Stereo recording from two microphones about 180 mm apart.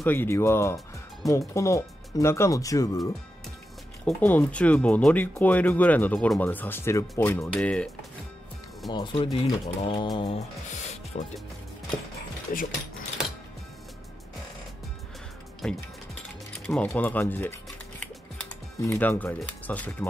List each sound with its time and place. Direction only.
0.0 s speech: 10° left (ahead or behind)
4.0 s speech: 10° left (ahead or behind)
8.9 s speech: 25° left (ahead or behind)
11.1 s speech: 45° left (ahead or behind)
12.5 s speech: 50° left (ahead or behind)
15.6 s speech: 5° left (ahead or behind)